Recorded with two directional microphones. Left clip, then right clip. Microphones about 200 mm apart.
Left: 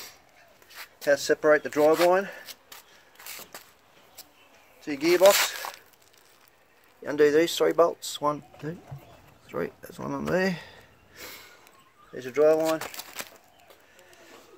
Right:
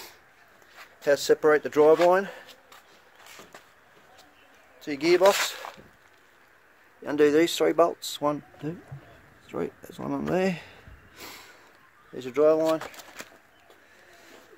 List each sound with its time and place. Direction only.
1.0 s speech: 20° right (ahead or behind)
4.8 s speech: 15° right (ahead or behind)
7.0 s speech: 15° right (ahead or behind)
10.0 s a sound: 10° right (ahead or behind)
12.1 s speech: 15° right (ahead or behind)
12.6 s speech: 5° left (ahead or behind)